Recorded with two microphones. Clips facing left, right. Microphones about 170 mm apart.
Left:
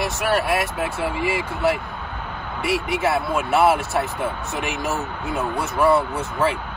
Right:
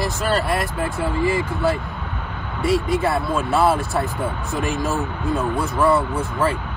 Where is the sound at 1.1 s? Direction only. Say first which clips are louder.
Right 3 dB; 70° left (ahead or behind).